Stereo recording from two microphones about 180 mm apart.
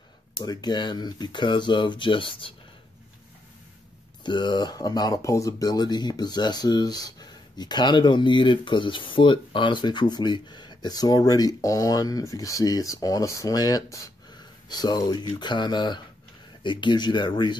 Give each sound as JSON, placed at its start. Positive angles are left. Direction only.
{"t": 0.4, "sound": "speech", "side_deg": 25}
{"t": 4.2, "sound": "speech", "side_deg": 25}